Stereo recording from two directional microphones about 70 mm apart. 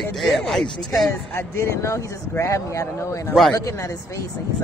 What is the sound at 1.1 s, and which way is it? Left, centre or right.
Speech, left.